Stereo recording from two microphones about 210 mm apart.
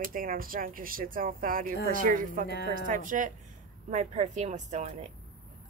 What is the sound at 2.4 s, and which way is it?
Speech, 50° left (ahead or behind).